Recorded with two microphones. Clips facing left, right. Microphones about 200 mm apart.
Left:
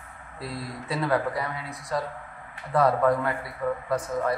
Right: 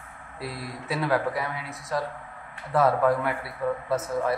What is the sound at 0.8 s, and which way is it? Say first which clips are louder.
A man's voice: even; centre (ahead or behind).